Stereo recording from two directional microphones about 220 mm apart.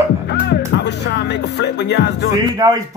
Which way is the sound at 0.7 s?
50° left (ahead or behind).